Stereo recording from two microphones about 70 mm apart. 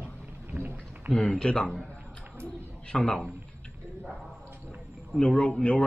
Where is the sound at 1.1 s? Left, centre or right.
Centre.